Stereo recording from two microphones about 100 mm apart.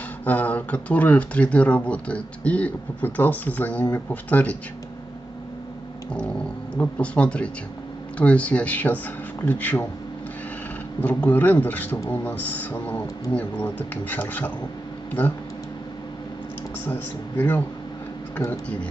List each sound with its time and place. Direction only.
0.2 s speech: 15° left (ahead or behind)
6.8 s speech: 10° left (ahead or behind)
11.0 s speech: 15° left (ahead or behind)
16.8 s speech: 20° left (ahead or behind)